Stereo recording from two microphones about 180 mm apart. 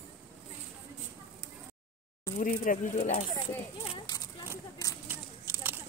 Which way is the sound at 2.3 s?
45° left (ahead or behind).